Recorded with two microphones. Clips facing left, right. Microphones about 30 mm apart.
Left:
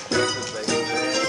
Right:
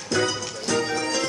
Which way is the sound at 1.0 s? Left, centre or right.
Left.